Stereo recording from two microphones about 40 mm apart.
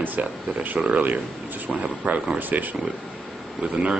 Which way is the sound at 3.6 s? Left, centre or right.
Right.